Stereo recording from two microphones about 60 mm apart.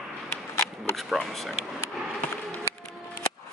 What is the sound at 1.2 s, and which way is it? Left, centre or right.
Speech, centre.